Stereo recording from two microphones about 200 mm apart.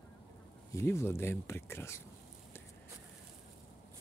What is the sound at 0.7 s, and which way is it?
Speech, 15° left (ahead or behind).